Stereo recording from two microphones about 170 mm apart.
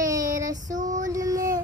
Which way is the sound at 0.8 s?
50° right (ahead or behind).